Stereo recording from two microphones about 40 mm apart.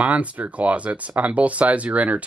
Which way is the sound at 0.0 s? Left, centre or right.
Right.